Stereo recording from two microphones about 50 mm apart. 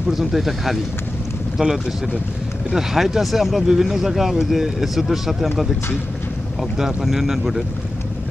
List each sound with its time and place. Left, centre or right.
0.1 s speech: centre
1.6 s speech: centre
2.7 s speech: centre
6.8 s speech: centre